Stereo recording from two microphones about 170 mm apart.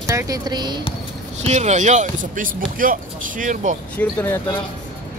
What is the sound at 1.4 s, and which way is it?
Speech, 40° right (ahead or behind).